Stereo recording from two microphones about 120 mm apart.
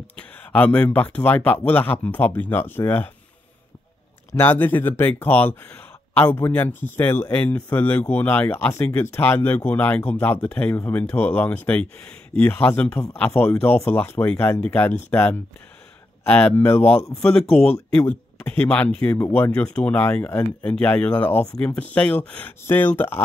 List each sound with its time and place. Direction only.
0.1 s speech: 10° left (ahead or behind)
4.3 s speech: 15° left (ahead or behind)